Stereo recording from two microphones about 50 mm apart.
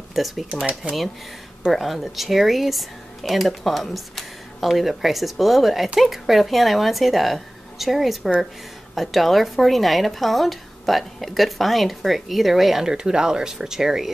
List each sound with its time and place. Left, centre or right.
0.1 s speech: centre
0.8 s speech: right
1.7 s speech: centre